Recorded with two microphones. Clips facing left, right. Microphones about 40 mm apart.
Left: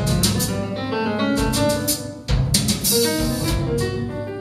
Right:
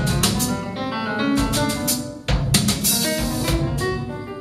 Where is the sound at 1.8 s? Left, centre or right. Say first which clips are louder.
Right 1 dB; right.